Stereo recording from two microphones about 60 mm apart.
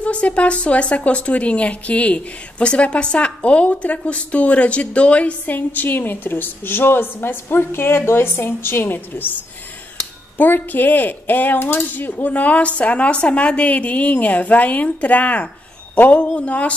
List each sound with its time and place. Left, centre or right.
0.0 s speech: centre
10.3 s speech: left